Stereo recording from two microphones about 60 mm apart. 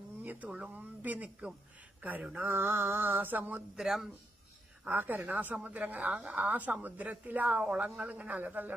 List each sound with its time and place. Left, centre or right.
0.2 s a woman's voice: right
2.3 s a sound: right
3.7 s speech: centre
4.8 s a woman's voice: right